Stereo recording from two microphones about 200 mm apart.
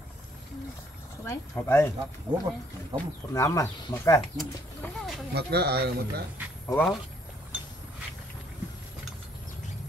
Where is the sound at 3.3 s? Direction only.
15° left (ahead or behind).